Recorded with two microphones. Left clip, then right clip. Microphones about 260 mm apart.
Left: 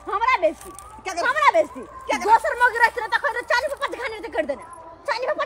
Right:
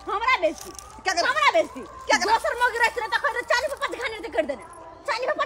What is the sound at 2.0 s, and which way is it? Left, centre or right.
Speech, centre.